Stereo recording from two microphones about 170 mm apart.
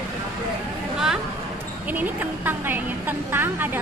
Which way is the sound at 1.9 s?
10° right (ahead or behind).